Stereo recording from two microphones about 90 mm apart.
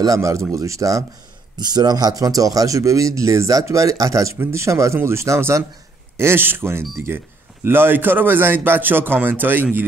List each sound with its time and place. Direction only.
0.0 s speech: 35° right (ahead or behind)
1.6 s a man's voice: 50° right (ahead or behind); by 9.8 s 20° right (ahead or behind)